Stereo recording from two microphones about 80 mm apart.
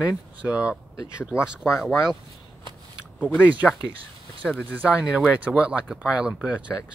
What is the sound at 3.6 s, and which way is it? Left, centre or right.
Speech, centre.